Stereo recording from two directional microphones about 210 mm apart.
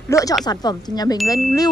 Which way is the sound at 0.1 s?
15° left (ahead or behind).